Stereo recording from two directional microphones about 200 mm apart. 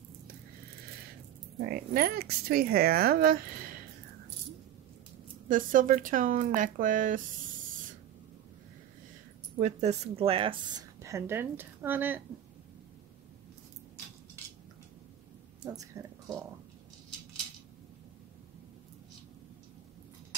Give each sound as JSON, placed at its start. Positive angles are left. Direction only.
{"t": 1.7, "sound": "speech", "side_deg": -50}
{"t": 5.5, "sound": "speech", "side_deg": -40}
{"t": 9.6, "sound": "a woman's voice", "side_deg": -35}
{"t": 15.6, "sound": "speech", "side_deg": -15}